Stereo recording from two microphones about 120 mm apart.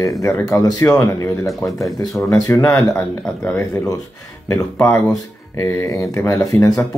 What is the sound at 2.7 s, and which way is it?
Speech, 25° left (ahead or behind).